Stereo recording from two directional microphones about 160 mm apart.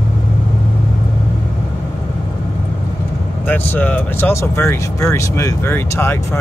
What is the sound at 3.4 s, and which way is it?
Speech, 10° left (ahead or behind).